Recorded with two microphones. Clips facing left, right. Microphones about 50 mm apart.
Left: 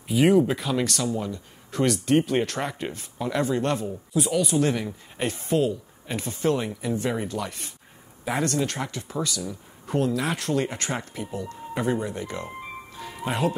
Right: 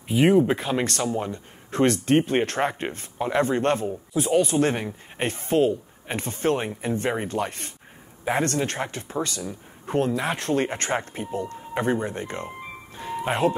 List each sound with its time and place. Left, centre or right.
0.1 s speech: centre
0.6 s speech: right
13.1 s music: right